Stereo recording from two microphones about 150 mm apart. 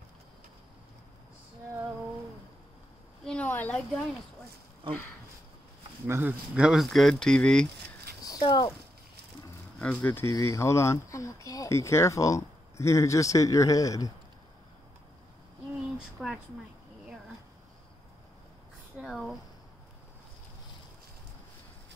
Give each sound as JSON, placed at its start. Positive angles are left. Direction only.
{"t": 3.3, "sound": "a sound", "side_deg": 10}
{"t": 4.8, "sound": "speech", "side_deg": -35}
{"t": 6.0, "sound": "speech", "side_deg": -15}
{"t": 8.2, "sound": "a sound", "side_deg": 25}
{"t": 9.8, "sound": "speech", "side_deg": 10}
{"t": 16.2, "sound": "speech", "side_deg": -5}
{"t": 18.9, "sound": "speech", "side_deg": 0}